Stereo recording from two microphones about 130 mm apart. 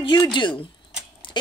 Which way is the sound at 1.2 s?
40° left (ahead or behind).